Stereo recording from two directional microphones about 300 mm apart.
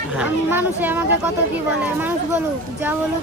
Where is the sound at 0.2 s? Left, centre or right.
Centre.